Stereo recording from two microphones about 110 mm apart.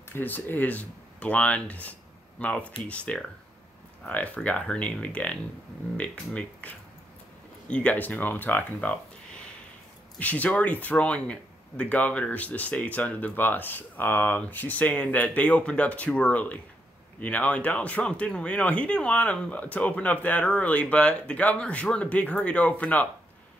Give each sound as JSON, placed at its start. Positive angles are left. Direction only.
{"t": 0.1, "sound": "speech", "side_deg": 15}
{"t": 10.1, "sound": "speech", "side_deg": 15}